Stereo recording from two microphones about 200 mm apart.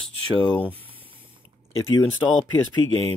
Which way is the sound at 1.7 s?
85° left.